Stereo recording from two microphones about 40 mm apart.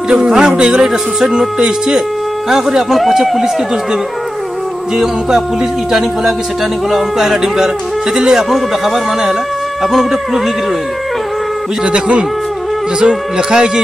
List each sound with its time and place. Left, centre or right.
0.1 s speech: centre
3.0 s speech: centre
4.9 s speech: centre
11.8 s speech: right